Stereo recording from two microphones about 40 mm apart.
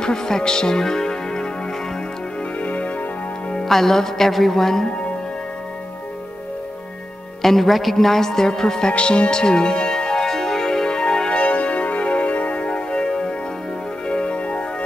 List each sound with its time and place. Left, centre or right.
0.0 s speech: centre
2.6 s music: left
3.6 s a woman's voice: centre
7.4 s a woman's voice: centre
8.9 s speech: left
10.3 s music: centre
11.4 s music: left